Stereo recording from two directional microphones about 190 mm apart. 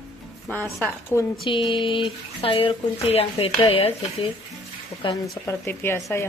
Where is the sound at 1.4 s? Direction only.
25° left (ahead or behind).